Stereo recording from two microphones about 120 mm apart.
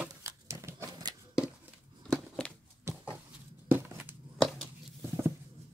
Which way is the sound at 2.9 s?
20° right (ahead or behind).